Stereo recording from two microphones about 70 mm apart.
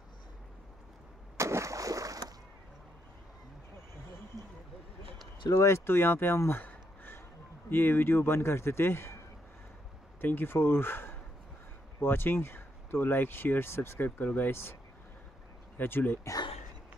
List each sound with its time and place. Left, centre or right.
1.3 s a sound: right
5.6 s speech: left
6.6 s a sound: left
7.7 s speech: left
10.2 s speech: left
15.8 s speech: left